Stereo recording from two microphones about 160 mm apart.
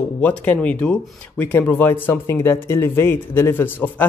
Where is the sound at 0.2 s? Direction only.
10° left (ahead or behind).